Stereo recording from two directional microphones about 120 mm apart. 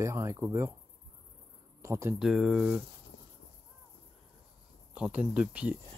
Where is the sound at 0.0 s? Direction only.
25° right (ahead or behind).